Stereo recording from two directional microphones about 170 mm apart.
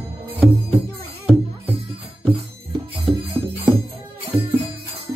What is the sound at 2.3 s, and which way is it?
Music, 35° right (ahead or behind).